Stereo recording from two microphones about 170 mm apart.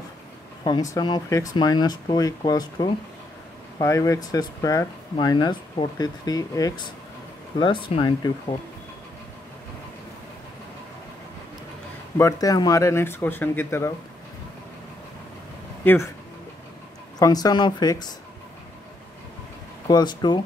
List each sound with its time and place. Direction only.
0.7 s speech: 25° left (ahead or behind)
12.2 s speech: 20° left (ahead or behind)
15.8 s speech: 10° left (ahead or behind)
17.2 s speech: 20° left (ahead or behind)
19.9 s speech: 25° left (ahead or behind)